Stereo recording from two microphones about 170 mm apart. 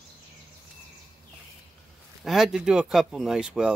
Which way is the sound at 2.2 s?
Centre (ahead or behind).